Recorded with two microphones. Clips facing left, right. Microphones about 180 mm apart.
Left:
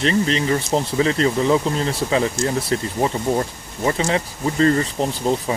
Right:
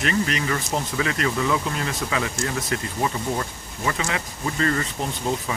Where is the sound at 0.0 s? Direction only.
30° left (ahead or behind).